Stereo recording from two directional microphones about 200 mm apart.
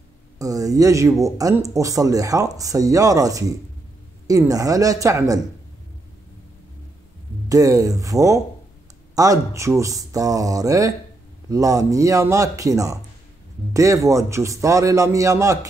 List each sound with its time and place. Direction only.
0.4 s speech: 15° right (ahead or behind)
7.4 s speech: 15° right (ahead or behind)